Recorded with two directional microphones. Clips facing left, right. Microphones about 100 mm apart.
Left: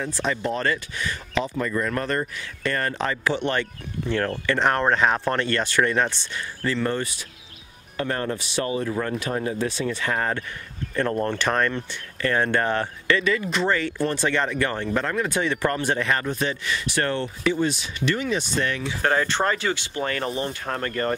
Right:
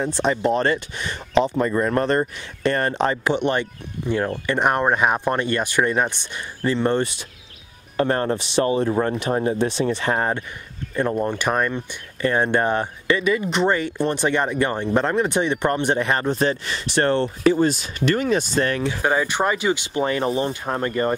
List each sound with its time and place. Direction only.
0.0 s speech: 25° right (ahead or behind)
11.0 s speech: 15° right (ahead or behind); by 18.9 s 50° right (ahead or behind)
19.0 s speech: 15° right (ahead or behind)